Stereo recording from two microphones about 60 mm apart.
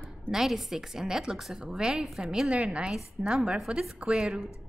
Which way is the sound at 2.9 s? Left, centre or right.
Centre.